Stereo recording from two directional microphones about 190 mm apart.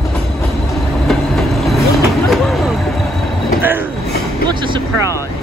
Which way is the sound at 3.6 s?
10° right (ahead or behind).